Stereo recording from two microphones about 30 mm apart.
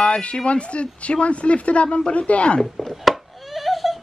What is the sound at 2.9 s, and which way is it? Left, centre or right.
Chopping, centre.